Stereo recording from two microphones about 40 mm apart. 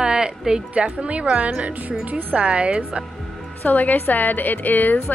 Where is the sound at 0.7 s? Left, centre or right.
Right.